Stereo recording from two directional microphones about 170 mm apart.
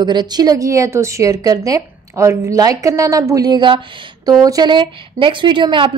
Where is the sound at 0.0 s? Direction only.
25° right (ahead or behind).